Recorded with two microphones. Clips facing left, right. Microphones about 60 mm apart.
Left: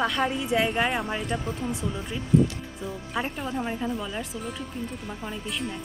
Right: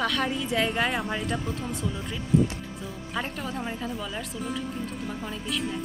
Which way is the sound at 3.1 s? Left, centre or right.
Centre.